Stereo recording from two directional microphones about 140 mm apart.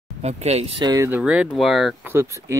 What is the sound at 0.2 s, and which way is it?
Speech, 50° right (ahead or behind).